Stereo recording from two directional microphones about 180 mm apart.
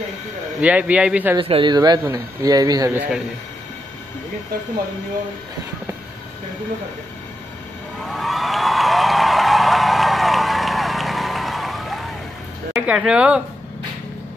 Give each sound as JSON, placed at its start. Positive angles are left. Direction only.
{"t": 0.6, "sound": "speech", "side_deg": -10}
{"t": 1.3, "sound": "speech", "side_deg": -30}
{"t": 8.0, "sound": "a sound", "side_deg": 0}
{"t": 12.7, "sound": "speech", "side_deg": -5}